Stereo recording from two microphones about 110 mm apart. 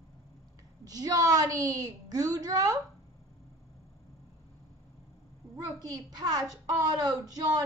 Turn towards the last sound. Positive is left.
turn(degrees=-35)  # may be behind; listen again after turning